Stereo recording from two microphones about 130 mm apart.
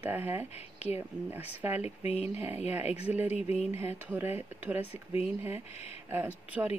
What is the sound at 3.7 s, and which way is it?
Speech, 15° right (ahead or behind).